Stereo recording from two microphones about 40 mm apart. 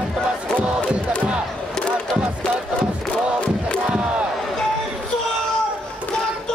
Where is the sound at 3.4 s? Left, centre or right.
Left.